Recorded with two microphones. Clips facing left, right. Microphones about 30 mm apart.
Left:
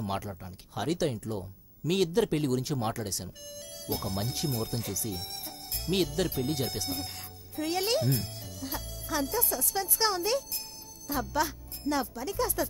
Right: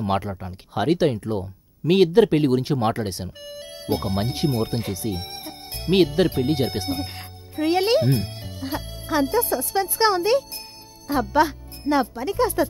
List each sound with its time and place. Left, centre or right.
0.0 s speech: right